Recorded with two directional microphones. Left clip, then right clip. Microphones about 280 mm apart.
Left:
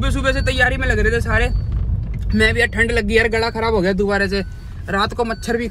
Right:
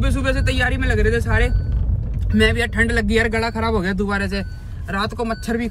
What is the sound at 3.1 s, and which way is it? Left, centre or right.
Speech, left.